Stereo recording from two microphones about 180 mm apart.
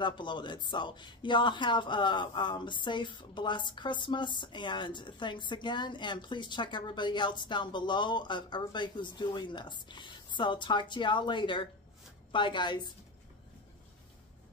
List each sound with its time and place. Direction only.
0.0 s a woman's voice: 25° left (ahead or behind)